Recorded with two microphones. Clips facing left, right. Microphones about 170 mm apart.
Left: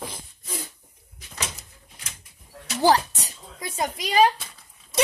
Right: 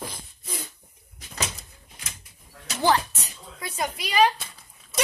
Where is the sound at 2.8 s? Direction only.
35° left (ahead or behind).